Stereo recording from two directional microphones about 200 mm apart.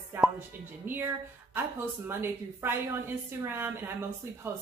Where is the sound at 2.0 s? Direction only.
10° right (ahead or behind).